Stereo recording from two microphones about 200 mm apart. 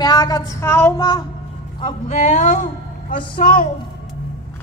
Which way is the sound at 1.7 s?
35° left (ahead or behind).